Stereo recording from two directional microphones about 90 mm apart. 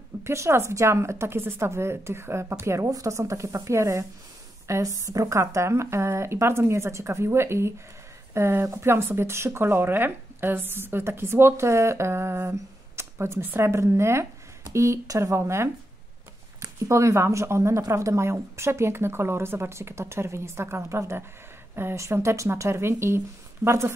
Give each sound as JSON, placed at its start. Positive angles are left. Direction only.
{"t": 0.2, "sound": "a woman's voice", "side_deg": -30}